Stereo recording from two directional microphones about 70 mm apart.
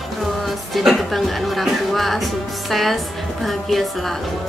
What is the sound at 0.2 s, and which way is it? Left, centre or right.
Speech, centre.